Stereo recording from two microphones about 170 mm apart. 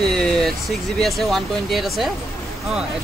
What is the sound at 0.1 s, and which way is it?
Speech, 5° left (ahead or behind).